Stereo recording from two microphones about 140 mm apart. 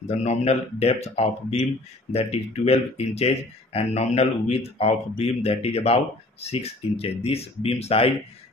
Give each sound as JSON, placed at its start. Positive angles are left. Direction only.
{"t": 0.0, "sound": "speech", "side_deg": 50}